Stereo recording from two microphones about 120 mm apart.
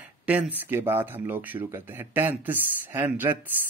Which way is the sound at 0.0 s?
10° right (ahead or behind).